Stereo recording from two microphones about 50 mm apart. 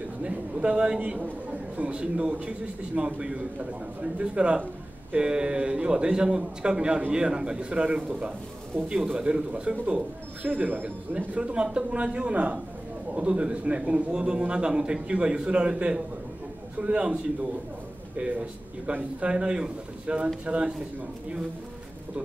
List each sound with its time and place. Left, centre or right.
0.2 s a man's voice: right
1.2 s a man's voice: right